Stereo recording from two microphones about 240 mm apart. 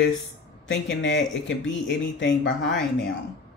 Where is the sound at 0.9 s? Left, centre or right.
Left.